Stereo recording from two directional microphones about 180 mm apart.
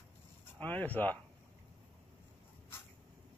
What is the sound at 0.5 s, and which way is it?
Speech, 10° left (ahead or behind).